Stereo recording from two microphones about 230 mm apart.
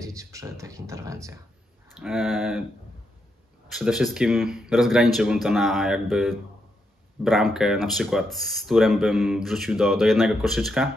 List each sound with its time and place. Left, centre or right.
0.0 s speech: centre
2.0 s speech: centre
3.6 s speech: centre